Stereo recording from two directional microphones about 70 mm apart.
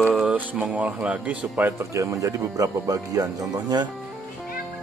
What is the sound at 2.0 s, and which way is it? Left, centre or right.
Speech, right.